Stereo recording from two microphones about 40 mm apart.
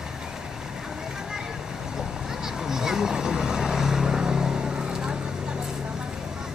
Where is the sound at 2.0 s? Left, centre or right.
Centre.